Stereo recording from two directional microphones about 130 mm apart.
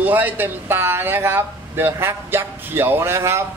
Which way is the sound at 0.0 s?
15° right (ahead or behind).